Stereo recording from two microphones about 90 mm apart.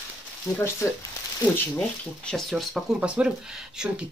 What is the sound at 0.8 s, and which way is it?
Speech, 30° left (ahead or behind).